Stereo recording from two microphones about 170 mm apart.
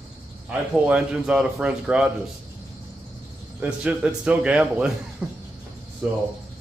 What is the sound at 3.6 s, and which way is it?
A man's voice, 5° right (ahead or behind).